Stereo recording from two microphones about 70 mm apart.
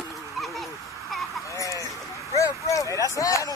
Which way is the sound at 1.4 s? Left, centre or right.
Left.